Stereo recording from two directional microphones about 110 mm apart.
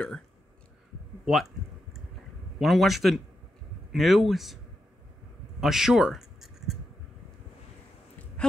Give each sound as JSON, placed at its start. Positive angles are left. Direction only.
{"t": 1.2, "sound": "speech", "side_deg": 0}
{"t": 2.6, "sound": "speech", "side_deg": 0}
{"t": 5.6, "sound": "writing", "side_deg": -5}